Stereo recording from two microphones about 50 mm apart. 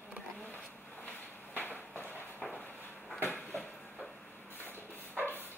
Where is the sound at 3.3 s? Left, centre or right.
Left.